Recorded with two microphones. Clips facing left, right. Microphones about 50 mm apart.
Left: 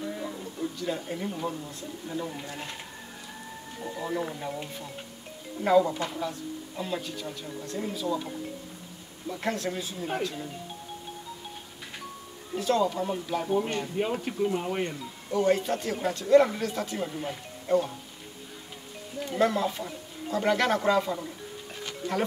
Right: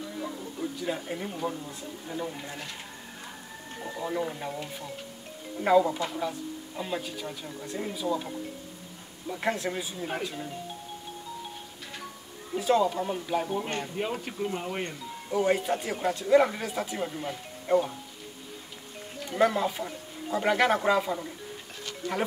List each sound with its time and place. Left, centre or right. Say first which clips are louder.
0.2 s speech: even; centre
3.8 s speech: even; centre
9.3 s speech: right 1 dB; centre
12.5 s speech: right 1 dB; centre
17.1 s speech: even; centre
19.3 s speech: right 1 dB; centre
21.7 s insect: left 1 dB; centre